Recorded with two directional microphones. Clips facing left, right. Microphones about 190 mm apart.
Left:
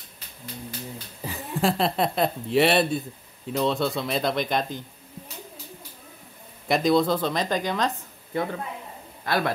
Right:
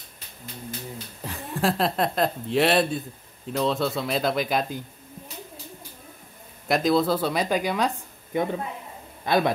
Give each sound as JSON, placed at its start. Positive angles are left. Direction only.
{"t": 1.2, "sound": "speech", "side_deg": 0}
{"t": 6.7, "sound": "a man's voice", "side_deg": 0}